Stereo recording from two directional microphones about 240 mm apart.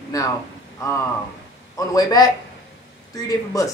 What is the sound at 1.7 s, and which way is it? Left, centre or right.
A woman's voice, centre.